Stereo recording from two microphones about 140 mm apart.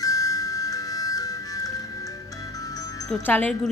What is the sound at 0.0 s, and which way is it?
Music, 25° left (ahead or behind).